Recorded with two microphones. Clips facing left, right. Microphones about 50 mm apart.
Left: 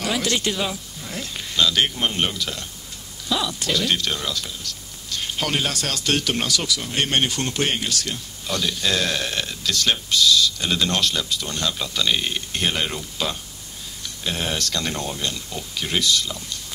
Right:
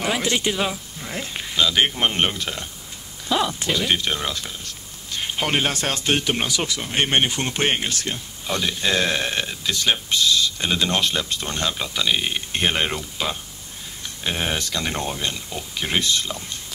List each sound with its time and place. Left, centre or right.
0.0 s speech: right